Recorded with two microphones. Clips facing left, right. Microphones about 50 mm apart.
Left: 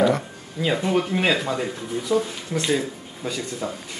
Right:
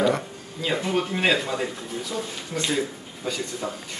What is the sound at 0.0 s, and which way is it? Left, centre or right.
Speech, centre.